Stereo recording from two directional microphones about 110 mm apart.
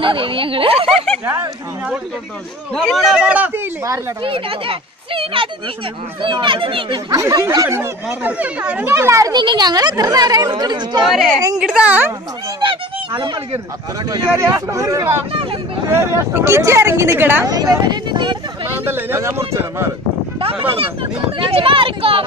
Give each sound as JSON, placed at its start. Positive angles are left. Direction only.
{"t": 0.0, "sound": "speech", "side_deg": -55}
{"t": 2.7, "sound": "speech", "side_deg": 5}
{"t": 4.2, "sound": "speech", "side_deg": -55}
{"t": 7.1, "sound": "a woman's voice", "side_deg": -30}
{"t": 8.2, "sound": "speech", "side_deg": -15}
{"t": 8.9, "sound": "speech", "side_deg": -25}
{"t": 9.3, "sound": "a woman's voice", "side_deg": -45}
{"t": 11.5, "sound": "speech", "side_deg": -10}
{"t": 12.5, "sound": "speech", "side_deg": -45}
{"t": 14.3, "sound": "speech", "side_deg": -25}
{"t": 17.5, "sound": "a woman's voice", "side_deg": -35}
{"t": 18.1, "sound": "speech", "side_deg": -45}
{"t": 18.9, "sound": "speech", "side_deg": -20}
{"t": 20.7, "sound": "speech", "side_deg": -55}